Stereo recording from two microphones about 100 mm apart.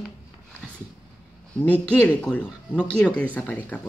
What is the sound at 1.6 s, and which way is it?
Speech, 15° left (ahead or behind).